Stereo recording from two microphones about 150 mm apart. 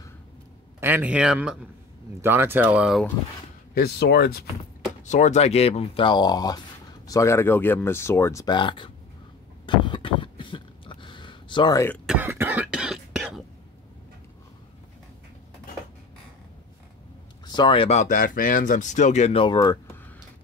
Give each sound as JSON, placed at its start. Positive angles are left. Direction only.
{"t": 0.7, "sound": "speech", "side_deg": -15}
{"t": 3.7, "sound": "speech", "side_deg": 90}
{"t": 5.0, "sound": "speech", "side_deg": 55}
{"t": 9.7, "sound": "a sound", "side_deg": 30}
{"t": 12.1, "sound": "cough", "side_deg": -15}
{"t": 17.5, "sound": "speech", "side_deg": 30}